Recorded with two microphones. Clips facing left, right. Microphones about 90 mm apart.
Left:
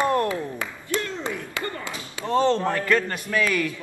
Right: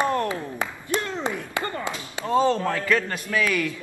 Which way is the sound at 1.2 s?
20° right (ahead or behind).